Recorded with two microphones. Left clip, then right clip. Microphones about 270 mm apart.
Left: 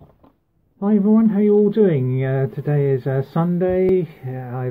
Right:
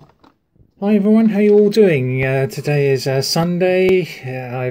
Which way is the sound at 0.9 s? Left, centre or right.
Right.